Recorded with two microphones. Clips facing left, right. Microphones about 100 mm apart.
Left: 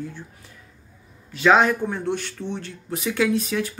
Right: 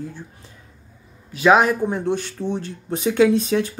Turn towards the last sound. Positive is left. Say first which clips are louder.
# right 6 dB
turn(degrees=-25)  # may be behind; listen again after turning